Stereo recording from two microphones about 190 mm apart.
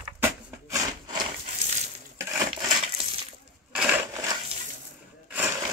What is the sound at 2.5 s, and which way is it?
Crushing, 30° right (ahead or behind).